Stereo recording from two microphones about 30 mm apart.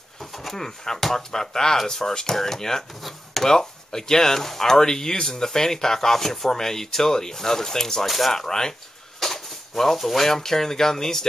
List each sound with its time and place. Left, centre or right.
0.2 s a sound: centre
0.6 s speech: centre
3.0 s speech: centre
3.4 s speech: centre
9.2 s a sound: centre
10.2 s speech: centre